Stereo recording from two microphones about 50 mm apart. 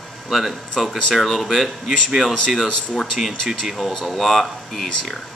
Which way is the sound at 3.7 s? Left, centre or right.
Centre.